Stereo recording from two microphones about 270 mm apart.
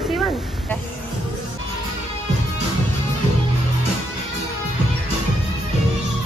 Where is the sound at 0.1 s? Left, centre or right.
Centre.